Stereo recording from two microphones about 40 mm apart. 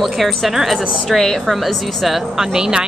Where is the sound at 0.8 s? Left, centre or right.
Centre.